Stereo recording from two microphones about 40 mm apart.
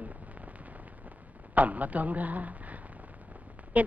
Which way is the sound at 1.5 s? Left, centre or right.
Right.